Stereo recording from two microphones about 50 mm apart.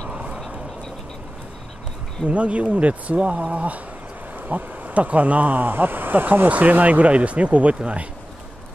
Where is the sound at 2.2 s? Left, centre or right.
Right.